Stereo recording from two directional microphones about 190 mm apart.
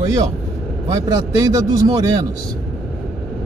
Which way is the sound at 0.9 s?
20° right (ahead or behind).